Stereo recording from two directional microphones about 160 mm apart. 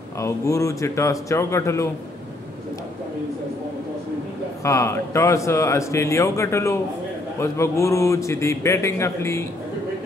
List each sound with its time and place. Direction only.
0.2 s speech: 20° left (ahead or behind)
4.6 s a man's voice: 20° left (ahead or behind)